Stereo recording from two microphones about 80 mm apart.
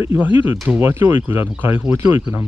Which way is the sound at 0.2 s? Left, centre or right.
Right.